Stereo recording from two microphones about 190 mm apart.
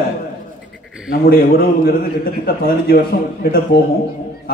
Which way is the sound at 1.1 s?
55° left (ahead or behind).